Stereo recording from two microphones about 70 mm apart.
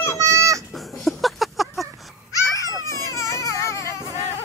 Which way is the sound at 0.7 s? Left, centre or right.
Centre.